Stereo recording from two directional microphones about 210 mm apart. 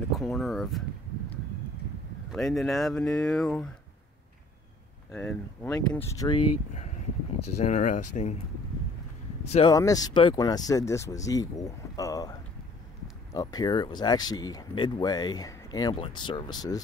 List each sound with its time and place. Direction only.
0.2 s speech: centre (ahead or behind)
2.3 s speech: centre (ahead or behind)
5.1 s speech: 5° left (ahead or behind)
7.5 s speech: 35° left (ahead or behind)
9.5 s speech: 20° left (ahead or behind)